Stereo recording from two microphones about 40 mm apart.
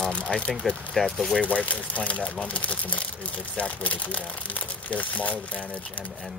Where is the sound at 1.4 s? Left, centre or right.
Left.